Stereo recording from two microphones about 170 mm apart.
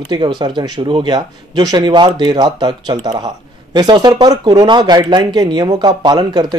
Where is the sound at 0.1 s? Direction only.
25° right (ahead or behind).